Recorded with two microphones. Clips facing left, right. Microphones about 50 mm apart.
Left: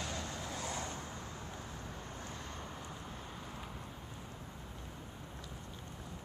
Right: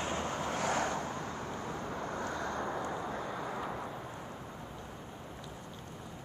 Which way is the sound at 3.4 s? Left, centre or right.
Right.